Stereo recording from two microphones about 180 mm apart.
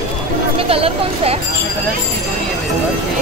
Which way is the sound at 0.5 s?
30° right (ahead or behind).